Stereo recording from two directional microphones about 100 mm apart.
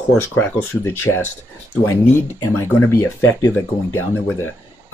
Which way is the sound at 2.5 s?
20° left (ahead or behind).